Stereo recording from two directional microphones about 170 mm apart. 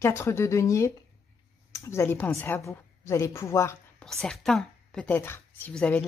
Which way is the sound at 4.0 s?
5° left (ahead or behind).